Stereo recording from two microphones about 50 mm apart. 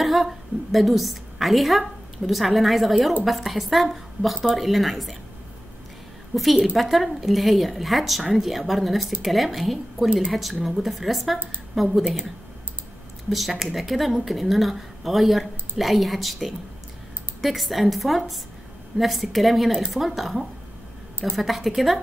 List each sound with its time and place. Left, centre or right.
0.0 s a woman's voice: centre
6.3 s speech: centre
13.3 s speech: centre